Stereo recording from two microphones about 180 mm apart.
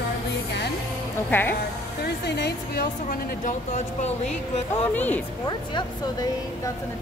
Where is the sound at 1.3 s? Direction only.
10° left (ahead or behind).